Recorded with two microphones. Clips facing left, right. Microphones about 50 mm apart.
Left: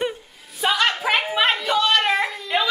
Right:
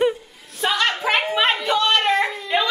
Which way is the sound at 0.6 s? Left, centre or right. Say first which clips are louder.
Even; centre.